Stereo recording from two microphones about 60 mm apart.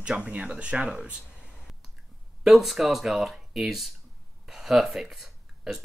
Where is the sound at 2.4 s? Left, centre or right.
Centre.